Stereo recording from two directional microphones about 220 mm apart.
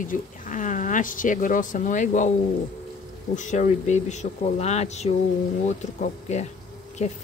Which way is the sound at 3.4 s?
35° left (ahead or behind).